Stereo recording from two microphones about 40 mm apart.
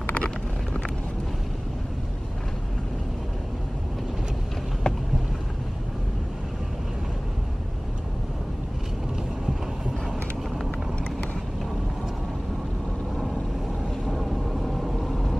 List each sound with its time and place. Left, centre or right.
4.9 s boat: centre
14.1 s vehicle: centre